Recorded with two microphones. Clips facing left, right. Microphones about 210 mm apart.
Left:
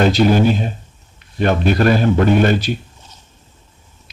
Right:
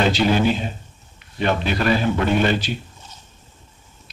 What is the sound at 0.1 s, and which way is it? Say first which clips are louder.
Speech: left 5 dB; 45° left (ahead or behind).